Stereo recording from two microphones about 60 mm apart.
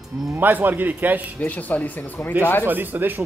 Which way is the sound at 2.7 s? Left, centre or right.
Right.